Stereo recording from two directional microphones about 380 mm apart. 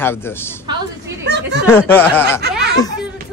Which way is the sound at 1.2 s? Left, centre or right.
Right.